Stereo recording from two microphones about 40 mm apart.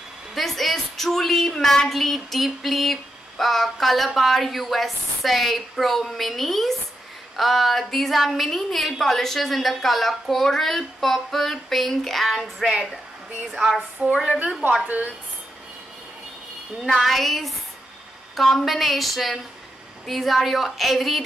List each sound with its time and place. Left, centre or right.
0.3 s a woman's voice: centre
14.0 s a woman's voice: right
14.9 s a woman's voice: right
16.9 s a woman's voice: centre